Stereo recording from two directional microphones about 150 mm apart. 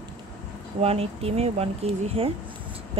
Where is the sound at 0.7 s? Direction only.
40° right (ahead or behind).